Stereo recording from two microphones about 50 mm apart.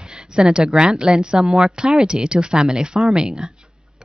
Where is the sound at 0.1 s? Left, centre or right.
Centre.